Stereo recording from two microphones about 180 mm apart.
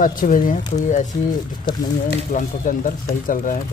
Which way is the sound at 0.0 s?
50° left (ahead or behind).